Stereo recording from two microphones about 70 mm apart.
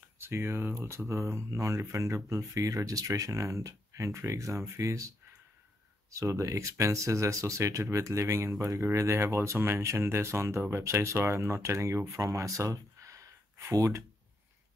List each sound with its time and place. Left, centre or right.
0.2 s speech: right